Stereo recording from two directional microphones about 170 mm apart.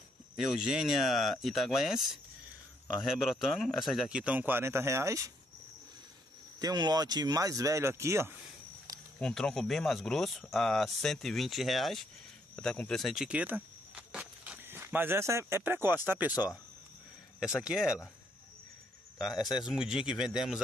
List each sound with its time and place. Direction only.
0.4 s a man's voice: 5° right (ahead or behind)
6.6 s speech: 25° right (ahead or behind)
9.2 s speech: centre (ahead or behind)
17.6 s speech: 5° right (ahead or behind)
19.3 s speech: 25° left (ahead or behind)
19.6 s speech: 5° right (ahead or behind)